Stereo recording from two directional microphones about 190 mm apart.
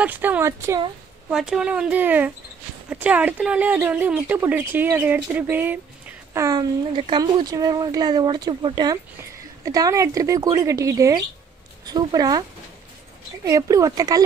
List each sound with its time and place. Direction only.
0.0 s speech: 10° right (ahead or behind)
1.3 s speech: 5° right (ahead or behind); by 14.2 s 20° right (ahead or behind)